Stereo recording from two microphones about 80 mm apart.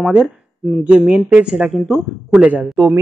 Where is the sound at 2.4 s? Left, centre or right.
Centre.